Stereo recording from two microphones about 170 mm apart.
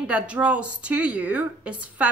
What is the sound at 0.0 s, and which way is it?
A woman's voice, 5° right (ahead or behind).